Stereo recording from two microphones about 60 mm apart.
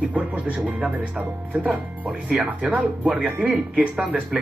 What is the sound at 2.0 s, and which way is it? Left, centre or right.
Speech, centre.